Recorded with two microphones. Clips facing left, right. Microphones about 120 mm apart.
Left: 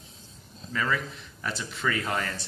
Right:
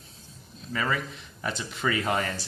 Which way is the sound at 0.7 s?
5° right (ahead or behind).